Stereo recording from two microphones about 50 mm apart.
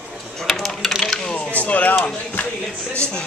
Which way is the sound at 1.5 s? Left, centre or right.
Left.